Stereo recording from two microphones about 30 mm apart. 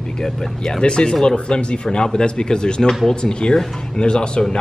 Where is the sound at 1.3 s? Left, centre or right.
Left.